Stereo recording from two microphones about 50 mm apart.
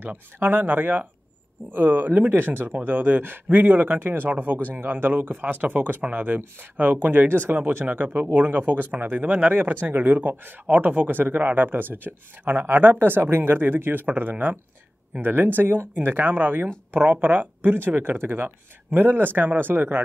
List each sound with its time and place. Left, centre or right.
0.0 s speech: right
7.8 s speech: right
8.1 s speech: right
14.0 s speech: right